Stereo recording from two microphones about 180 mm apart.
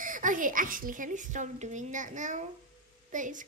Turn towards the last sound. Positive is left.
turn(degrees=-45)  # may be behind; listen again after turning